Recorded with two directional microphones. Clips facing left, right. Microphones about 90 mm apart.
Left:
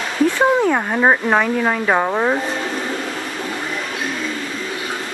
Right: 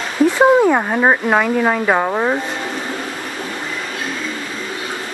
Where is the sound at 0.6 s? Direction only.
15° right (ahead or behind).